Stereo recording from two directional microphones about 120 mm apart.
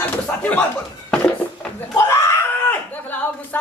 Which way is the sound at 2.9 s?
15° left (ahead or behind).